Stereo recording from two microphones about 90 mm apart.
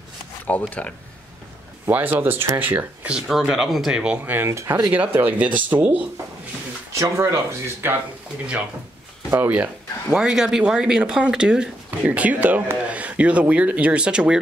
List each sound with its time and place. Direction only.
0.5 s speech: 20° left (ahead or behind)
1.9 s speech: 20° right (ahead or behind)
3.2 s speech: centre (ahead or behind); by 4.9 s 35° right (ahead or behind)
4.9 s speech: 20° right (ahead or behind)
6.9 s speech: 35° right (ahead or behind)
9.4 s speech: 15° right (ahead or behind)